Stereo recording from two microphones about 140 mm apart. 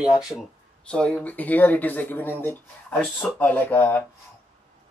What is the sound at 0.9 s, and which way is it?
Speech, 10° left (ahead or behind).